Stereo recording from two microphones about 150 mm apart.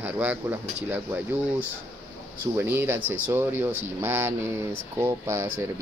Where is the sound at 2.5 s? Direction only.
15° right (ahead or behind).